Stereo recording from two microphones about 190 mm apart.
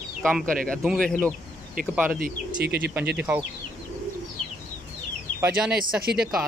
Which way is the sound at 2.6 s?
60° right (ahead or behind).